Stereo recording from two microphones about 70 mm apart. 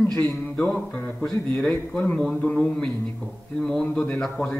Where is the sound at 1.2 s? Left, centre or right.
Centre.